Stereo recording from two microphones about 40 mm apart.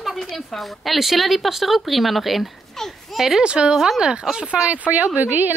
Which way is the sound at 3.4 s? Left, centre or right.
Right.